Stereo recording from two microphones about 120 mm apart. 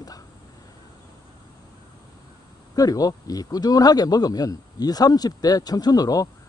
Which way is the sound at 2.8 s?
30° left (ahead or behind).